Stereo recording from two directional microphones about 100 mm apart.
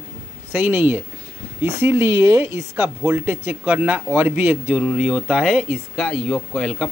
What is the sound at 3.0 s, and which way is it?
Speech, 20° right (ahead or behind).